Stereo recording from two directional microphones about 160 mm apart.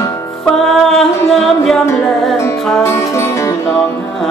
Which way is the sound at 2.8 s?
15° left (ahead or behind).